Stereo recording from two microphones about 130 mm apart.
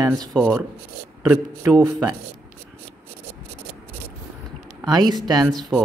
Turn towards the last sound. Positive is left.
turn(degrees=5)  # may be behind; listen again after turning